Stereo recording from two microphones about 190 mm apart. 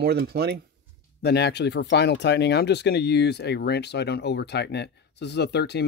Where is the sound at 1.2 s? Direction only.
60° left (ahead or behind).